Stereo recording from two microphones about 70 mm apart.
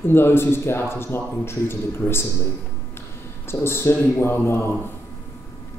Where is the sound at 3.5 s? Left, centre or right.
Left.